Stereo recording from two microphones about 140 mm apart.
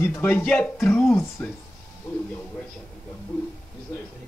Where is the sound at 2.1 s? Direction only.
15° left (ahead or behind).